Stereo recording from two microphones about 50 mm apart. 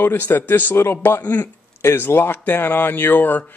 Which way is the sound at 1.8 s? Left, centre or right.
Left.